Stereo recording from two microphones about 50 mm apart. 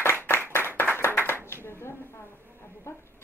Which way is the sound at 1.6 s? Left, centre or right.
Left.